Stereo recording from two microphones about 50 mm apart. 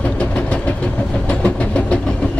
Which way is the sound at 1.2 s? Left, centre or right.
Left.